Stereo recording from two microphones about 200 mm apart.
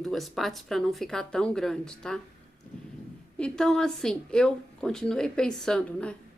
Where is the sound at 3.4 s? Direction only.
5° left (ahead or behind).